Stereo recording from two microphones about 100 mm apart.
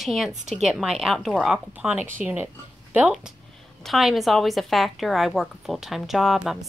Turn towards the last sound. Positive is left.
turn(degrees=-5)  # may be behind; listen again after turning